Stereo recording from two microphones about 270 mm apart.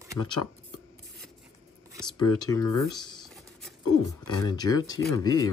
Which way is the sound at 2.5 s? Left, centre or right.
Centre.